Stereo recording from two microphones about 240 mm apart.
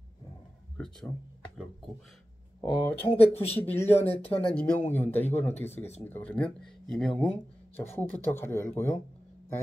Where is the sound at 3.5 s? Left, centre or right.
Centre.